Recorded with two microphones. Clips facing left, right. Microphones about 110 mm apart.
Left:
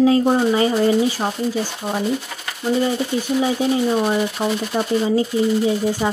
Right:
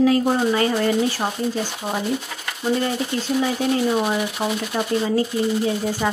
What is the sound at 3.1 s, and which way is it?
Speech, 10° left (ahead or behind).